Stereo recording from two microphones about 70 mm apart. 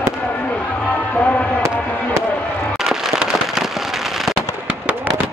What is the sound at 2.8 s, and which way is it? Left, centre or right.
Fireworks, centre.